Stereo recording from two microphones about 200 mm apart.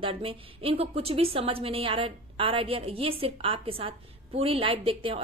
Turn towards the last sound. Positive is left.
turn(degrees=-25)  # may be behind; listen again after turning